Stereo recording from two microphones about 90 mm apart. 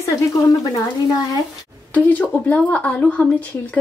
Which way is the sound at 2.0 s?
20° left (ahead or behind).